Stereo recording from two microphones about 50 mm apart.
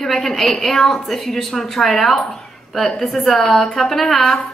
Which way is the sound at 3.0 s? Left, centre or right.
Centre.